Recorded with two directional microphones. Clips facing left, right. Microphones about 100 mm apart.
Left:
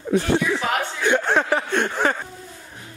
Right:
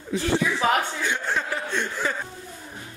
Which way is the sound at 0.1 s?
55° left (ahead or behind).